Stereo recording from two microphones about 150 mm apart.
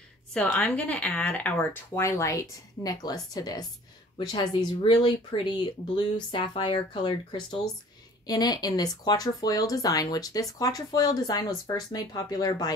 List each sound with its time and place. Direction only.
0.3 s speech: 5° left (ahead or behind); by 12.7 s 25° left (ahead or behind)